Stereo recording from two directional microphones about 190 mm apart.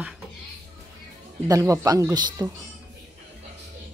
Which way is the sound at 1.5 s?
15° right (ahead or behind).